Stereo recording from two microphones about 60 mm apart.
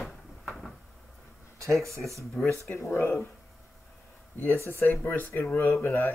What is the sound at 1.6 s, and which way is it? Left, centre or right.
Speech, centre.